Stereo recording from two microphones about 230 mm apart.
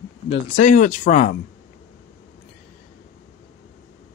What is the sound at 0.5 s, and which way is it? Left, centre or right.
Speech, left.